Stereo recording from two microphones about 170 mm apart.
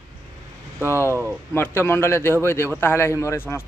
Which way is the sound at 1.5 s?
15° left (ahead or behind).